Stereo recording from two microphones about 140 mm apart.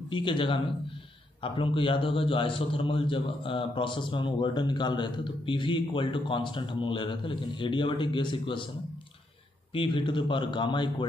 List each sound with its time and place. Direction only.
0.1 s a man's voice: 35° left (ahead or behind)
9.8 s a man's voice: 35° left (ahead or behind)